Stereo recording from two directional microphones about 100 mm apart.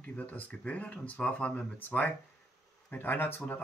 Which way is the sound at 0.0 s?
15° left (ahead or behind).